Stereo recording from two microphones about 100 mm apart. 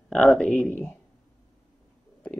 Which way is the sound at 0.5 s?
20° left (ahead or behind).